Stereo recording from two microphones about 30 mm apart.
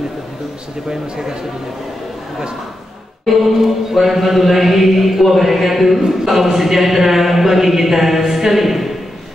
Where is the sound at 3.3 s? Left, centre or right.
Centre.